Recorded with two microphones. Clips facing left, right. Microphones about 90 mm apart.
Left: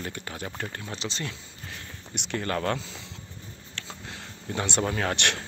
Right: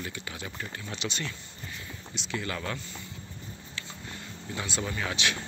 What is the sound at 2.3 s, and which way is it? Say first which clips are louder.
Speech: left 6 dB; 45° left (ahead or behind).